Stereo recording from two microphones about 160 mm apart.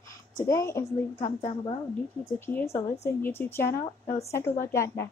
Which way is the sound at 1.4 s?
30° left (ahead or behind).